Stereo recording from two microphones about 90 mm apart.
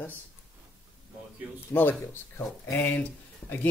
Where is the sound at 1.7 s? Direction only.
20° left (ahead or behind).